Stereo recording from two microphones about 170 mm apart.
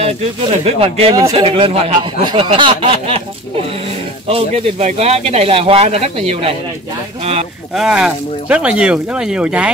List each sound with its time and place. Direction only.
0.0 s speech: 40° right (ahead or behind)
4.3 s speech: 35° right (ahead or behind)
7.7 s speech: 5° right (ahead or behind)